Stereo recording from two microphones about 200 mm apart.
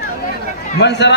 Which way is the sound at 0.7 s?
60° left (ahead or behind).